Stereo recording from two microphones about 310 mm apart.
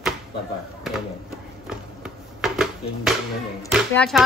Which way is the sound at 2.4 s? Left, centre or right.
Centre.